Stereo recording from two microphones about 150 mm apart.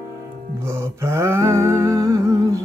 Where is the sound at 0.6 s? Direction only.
15° right (ahead or behind).